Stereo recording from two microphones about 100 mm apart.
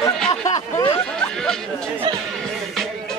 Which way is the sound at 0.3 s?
40° left (ahead or behind).